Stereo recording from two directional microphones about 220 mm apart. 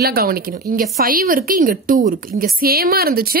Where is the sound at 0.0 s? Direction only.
45° right (ahead or behind).